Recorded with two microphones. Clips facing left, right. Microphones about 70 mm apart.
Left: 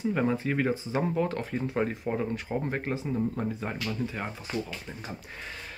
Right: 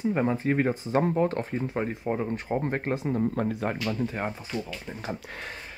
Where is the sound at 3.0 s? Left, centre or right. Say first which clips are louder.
Right 3 dB; right.